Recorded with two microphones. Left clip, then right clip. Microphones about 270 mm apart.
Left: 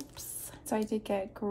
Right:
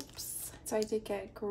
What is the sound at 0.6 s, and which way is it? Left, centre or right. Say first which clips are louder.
Speech: left 1 dB; centre.